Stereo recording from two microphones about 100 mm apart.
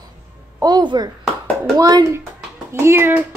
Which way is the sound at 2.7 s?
25° right (ahead or behind).